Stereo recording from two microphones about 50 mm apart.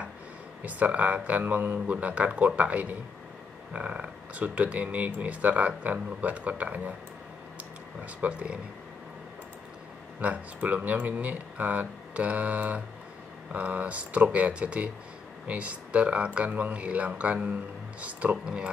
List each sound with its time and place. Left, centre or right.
0.7 s speech: right
1.9 s speech: right
8.0 s speech: right
10.2 s speech: right